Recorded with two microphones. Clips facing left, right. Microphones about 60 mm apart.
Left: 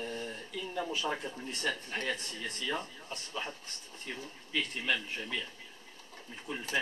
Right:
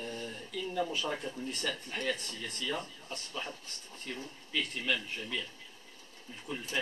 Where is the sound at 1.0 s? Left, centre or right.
Left.